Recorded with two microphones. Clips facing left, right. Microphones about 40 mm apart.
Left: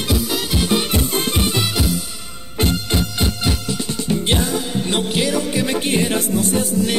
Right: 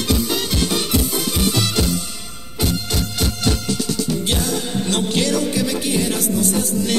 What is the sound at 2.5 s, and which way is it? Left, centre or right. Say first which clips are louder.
Music: left 3 dB; left.